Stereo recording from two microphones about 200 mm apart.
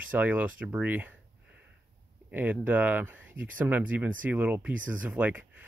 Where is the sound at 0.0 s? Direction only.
10° right (ahead or behind).